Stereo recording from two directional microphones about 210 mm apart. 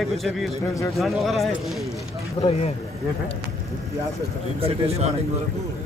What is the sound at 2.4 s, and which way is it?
Speech, 20° left (ahead or behind).